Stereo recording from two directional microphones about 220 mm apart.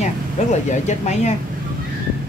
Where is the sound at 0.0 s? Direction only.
30° left (ahead or behind).